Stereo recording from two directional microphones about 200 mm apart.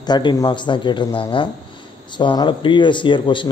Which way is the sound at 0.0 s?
20° left (ahead or behind).